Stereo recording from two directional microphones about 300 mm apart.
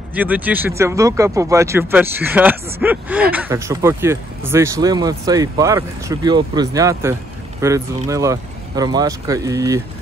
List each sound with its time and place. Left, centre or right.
0.1 s speech: centre